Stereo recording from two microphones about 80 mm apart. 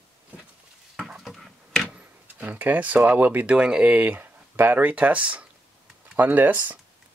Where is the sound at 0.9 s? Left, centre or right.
Centre.